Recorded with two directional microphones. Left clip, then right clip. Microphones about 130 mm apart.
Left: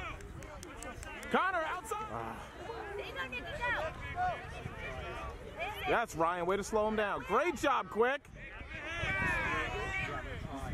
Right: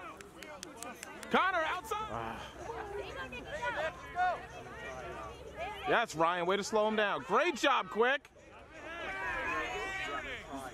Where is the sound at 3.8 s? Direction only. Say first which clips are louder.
Right 2 dB; 25° right (ahead or behind).